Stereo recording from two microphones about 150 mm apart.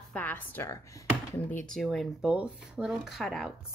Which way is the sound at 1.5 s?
10° left (ahead or behind).